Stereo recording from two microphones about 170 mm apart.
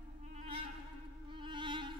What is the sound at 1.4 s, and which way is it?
Music, 30° right (ahead or behind).